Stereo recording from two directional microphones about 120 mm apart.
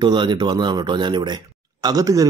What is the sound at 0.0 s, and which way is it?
Speech, 40° right (ahead or behind).